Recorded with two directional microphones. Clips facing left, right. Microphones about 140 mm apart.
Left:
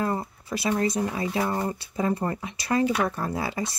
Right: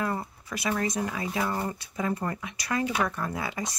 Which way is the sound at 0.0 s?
30° left (ahead or behind).